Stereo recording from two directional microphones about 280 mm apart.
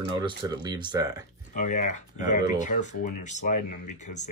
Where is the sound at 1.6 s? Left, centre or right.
Left.